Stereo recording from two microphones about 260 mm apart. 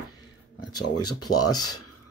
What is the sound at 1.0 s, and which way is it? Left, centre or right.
Speech, left.